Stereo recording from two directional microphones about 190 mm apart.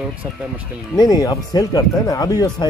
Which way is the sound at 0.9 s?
20° left (ahead or behind).